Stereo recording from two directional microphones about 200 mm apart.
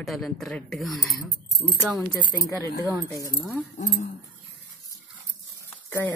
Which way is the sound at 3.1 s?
15° left (ahead or behind).